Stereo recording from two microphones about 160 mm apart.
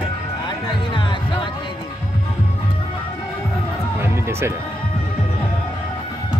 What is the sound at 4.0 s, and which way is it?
Music, 15° right (ahead or behind).